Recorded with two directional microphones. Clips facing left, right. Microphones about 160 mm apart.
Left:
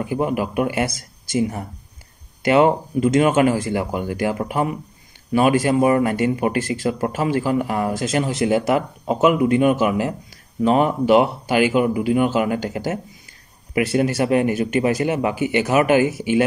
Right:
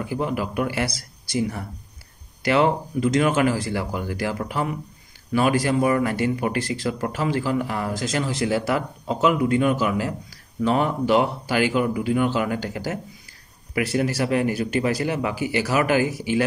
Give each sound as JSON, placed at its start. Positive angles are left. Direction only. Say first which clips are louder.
{"t": 0.0, "sound": "speech", "louder": "left 4 dB", "side_deg": 20}
{"t": 2.4, "sound": "speech", "louder": "left 4 dB", "side_deg": 20}